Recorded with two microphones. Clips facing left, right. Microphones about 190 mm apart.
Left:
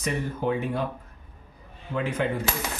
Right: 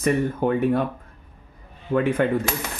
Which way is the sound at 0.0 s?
55° right (ahead or behind).